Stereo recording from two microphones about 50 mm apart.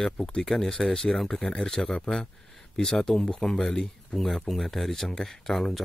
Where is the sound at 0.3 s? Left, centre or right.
Centre.